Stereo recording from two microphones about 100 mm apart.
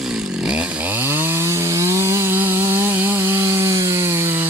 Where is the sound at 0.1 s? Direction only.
10° right (ahead or behind).